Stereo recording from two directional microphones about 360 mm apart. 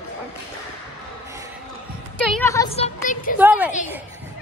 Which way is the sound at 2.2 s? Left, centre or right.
Centre.